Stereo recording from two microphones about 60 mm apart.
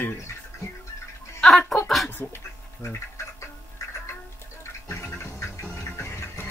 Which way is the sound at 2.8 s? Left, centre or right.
Left.